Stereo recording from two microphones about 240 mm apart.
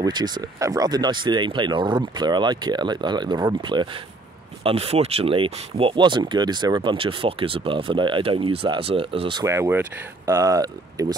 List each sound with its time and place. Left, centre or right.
0.0 s speech: centre
9.5 s speech: centre